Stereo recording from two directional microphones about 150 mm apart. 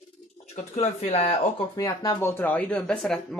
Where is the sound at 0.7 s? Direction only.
40° left (ahead or behind).